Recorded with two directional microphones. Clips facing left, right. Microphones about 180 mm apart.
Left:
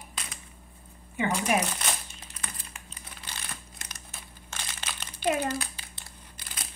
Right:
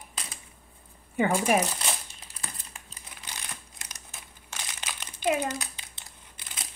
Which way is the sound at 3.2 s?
15° right (ahead or behind).